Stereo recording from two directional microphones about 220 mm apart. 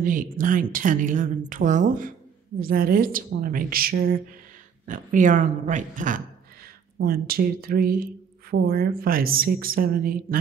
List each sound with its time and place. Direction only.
0.0 s a woman's voice: 40° right (ahead or behind)